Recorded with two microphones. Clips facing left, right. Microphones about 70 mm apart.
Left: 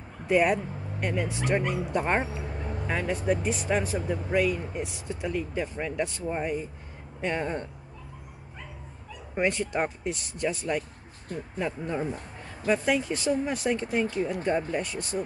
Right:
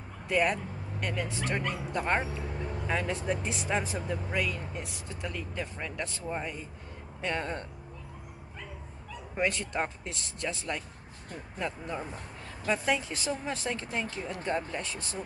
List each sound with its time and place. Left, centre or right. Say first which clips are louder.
0.3 s speech: left 5 dB; centre
5.3 s speech: left 7 dB; centre
9.3 s speech: left 4 dB; centre
11.5 s speech: left 4 dB; centre
12.6 s speech: left 4 dB; centre